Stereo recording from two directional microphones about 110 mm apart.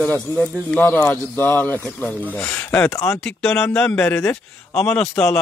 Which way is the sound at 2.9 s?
30° left (ahead or behind).